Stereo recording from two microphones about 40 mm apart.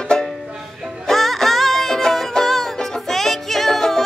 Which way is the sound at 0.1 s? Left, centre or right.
Centre.